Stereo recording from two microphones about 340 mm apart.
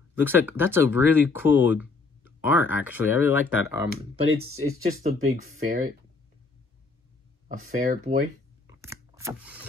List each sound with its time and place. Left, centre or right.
0.2 s speech: centre
3.9 s speech: right
7.8 s speech: right
8.6 s scrape: centre